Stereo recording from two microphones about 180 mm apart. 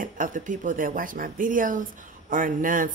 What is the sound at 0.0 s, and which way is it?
Speech, 50° right (ahead or behind).